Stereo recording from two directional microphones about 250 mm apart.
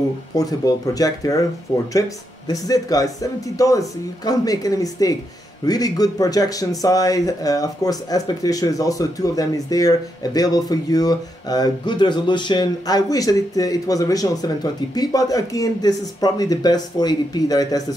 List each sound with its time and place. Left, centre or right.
0.4 s speech: centre